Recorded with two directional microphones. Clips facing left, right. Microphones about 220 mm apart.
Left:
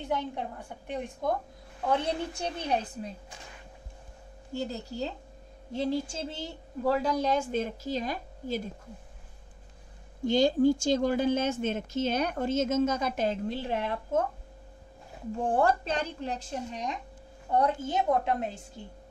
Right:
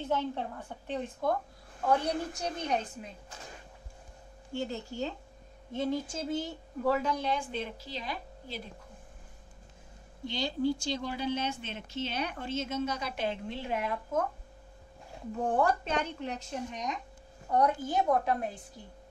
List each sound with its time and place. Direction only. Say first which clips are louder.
0.0 s a woman's voice: even; 15° left (ahead or behind)
1.9 s a woman's voice: even; 25° left (ahead or behind)
4.6 s a woman's voice: left 1 dB; 35° left (ahead or behind)
10.2 s speech: left 8 dB; 45° left (ahead or behind); by 14.2 s 30° left (ahead or behind)
15.4 s a woman's voice: left 2 dB; 30° left (ahead or behind)